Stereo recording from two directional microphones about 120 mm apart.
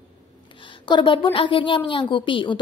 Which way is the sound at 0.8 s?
40° left (ahead or behind).